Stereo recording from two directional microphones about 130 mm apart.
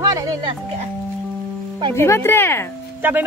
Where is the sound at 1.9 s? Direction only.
20° left (ahead or behind).